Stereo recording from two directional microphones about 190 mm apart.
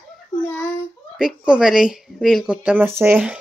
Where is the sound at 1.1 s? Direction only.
5° right (ahead or behind).